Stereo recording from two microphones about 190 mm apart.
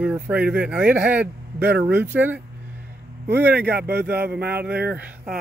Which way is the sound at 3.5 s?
60° right (ahead or behind).